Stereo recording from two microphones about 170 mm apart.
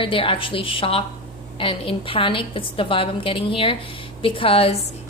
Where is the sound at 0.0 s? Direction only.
30° left (ahead or behind).